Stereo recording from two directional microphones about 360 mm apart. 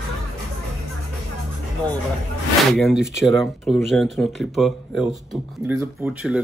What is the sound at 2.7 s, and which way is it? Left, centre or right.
Speech, centre.